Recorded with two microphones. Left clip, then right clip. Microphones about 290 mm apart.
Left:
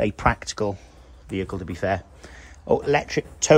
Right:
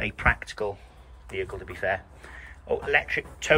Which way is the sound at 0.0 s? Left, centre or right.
Centre.